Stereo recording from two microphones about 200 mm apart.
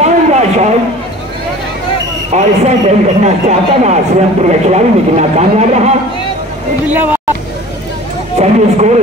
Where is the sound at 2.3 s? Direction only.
35° right (ahead or behind).